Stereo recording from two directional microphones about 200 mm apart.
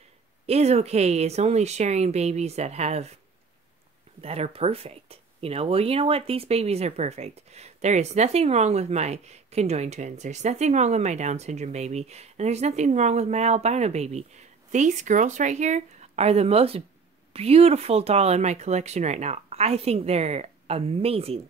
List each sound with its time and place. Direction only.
0.5 s speech: 30° right (ahead or behind)
4.2 s speech: 30° right (ahead or behind)